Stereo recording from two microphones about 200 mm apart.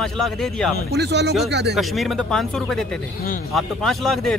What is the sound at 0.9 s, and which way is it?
Speech, 55° right (ahead or behind).